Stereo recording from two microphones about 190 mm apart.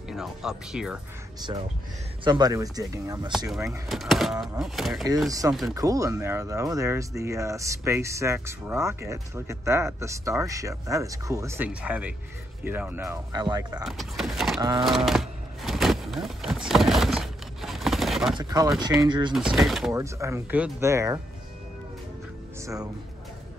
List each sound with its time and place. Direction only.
0.1 s speech: centre (ahead or behind)
2.2 s speech: 20° right (ahead or behind)
3.3 s speech: 5° right (ahead or behind)
5.8 s speech: 20° right (ahead or behind)
13.8 s speech: centre (ahead or behind)
14.6 s speech: 20° right (ahead or behind)
14.9 s a sound: centre (ahead or behind)
18.3 s speech: 20° right (ahead or behind)
19.5 s speech: centre (ahead or behind)
19.9 s speech: 15° right (ahead or behind)